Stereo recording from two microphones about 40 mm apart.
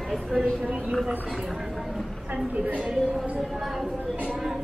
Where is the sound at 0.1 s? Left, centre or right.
Centre.